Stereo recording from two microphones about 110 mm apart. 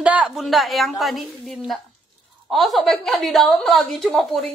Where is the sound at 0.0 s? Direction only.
10° right (ahead or behind).